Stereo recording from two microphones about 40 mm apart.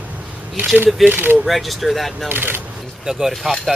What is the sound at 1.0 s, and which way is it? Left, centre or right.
Speech, right.